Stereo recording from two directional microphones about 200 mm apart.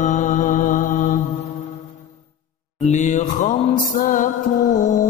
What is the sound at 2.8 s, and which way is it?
Music, 35° left (ahead or behind).